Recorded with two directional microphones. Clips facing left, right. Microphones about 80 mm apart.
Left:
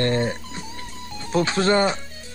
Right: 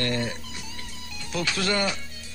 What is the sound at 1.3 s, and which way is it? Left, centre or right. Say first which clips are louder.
Speech: left 7 dB; left.